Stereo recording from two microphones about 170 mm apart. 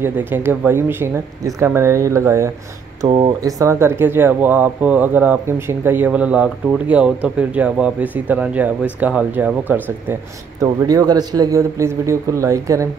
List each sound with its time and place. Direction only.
0.0 s a man's voice: 10° right (ahead or behind)
10.6 s a man's voice: 20° right (ahead or behind)